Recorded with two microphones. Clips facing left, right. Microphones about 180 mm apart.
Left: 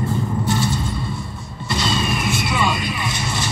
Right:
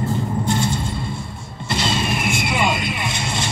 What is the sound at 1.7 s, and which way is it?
Vehicle, 25° right (ahead or behind).